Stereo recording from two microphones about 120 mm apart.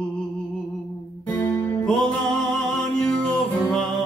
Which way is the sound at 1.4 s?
15° left (ahead or behind).